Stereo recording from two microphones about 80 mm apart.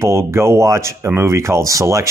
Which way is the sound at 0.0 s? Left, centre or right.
Right.